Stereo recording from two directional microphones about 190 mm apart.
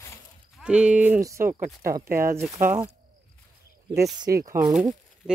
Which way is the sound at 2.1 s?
50° right (ahead or behind).